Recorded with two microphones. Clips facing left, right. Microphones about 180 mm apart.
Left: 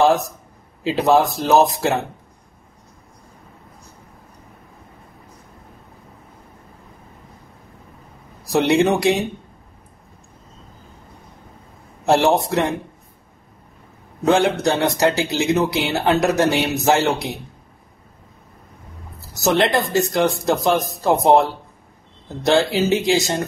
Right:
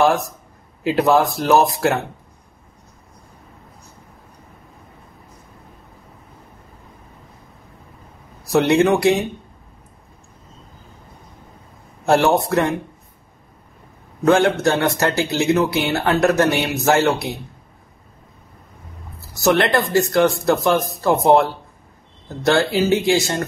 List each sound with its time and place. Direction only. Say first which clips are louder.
0.9 s a man's voice: even; 20° left (ahead or behind)
8.5 s a man's voice: right 1 dB; 15° left (ahead or behind)
12.1 s a man's voice: even; 20° left (ahead or behind)
14.2 s a man's voice: right 1 dB; 15° left (ahead or behind)
19.4 s a man's voice: right 1 dB; 20° left (ahead or behind)